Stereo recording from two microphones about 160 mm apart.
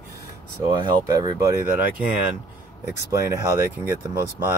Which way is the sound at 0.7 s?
30° right (ahead or behind).